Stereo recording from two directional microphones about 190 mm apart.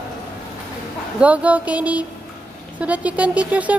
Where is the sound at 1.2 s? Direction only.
5° right (ahead or behind).